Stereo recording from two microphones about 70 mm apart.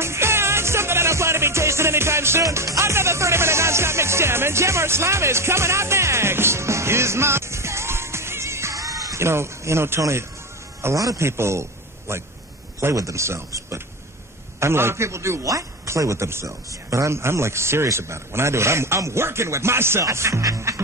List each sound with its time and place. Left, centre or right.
0.0 s music: right
9.2 s speech: right
11.0 s a man's voice: right
11.2 s speech: right
14.6 s speech: right